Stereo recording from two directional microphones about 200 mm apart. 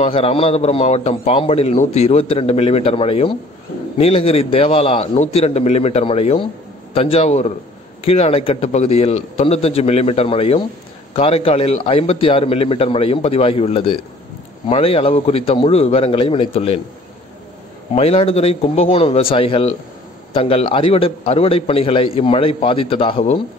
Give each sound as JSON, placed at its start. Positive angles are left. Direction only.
{"t": 0.0, "sound": "a man's voice", "side_deg": 30}
{"t": 17.9, "sound": "a man's voice", "side_deg": 30}